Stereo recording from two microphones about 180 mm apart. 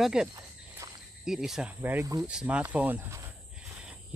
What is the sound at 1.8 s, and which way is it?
Speech, 15° right (ahead or behind).